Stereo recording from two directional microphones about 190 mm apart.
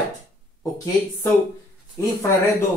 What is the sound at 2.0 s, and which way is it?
Speech, 15° left (ahead or behind).